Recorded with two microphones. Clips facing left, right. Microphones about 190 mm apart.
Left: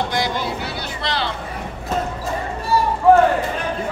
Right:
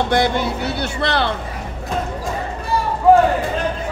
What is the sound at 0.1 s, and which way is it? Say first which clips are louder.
Speech: right 5 dB; 55° right (ahead or behind).